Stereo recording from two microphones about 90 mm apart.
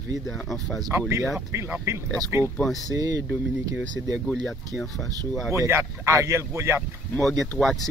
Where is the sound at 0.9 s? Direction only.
25° right (ahead or behind).